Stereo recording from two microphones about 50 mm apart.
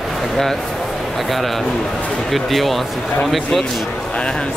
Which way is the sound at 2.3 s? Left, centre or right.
Centre.